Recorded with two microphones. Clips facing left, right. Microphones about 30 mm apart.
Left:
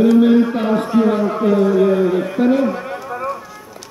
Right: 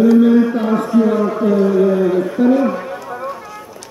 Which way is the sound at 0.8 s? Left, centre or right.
Left.